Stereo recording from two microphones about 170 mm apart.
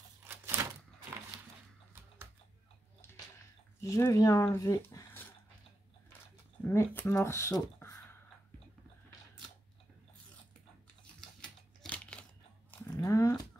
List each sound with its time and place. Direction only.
0.6 s typewriter: 15° right (ahead or behind)
3.8 s speech: 15° left (ahead or behind)
6.6 s speech: 15° left (ahead or behind)
11.8 s crumpling: 5° left (ahead or behind)
12.7 s a sound: 20° left (ahead or behind)